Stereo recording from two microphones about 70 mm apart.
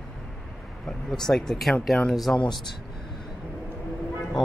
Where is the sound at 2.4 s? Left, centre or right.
Left.